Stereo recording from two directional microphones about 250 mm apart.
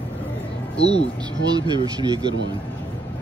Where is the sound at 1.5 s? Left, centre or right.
Centre.